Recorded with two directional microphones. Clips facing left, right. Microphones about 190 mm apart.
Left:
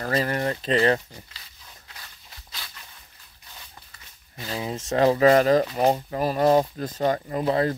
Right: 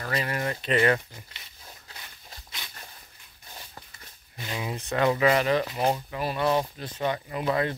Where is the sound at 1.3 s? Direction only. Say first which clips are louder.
Right 1 dB; 25° right (ahead or behind).